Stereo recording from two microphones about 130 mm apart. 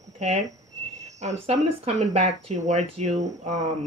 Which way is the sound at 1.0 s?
60° right (ahead or behind).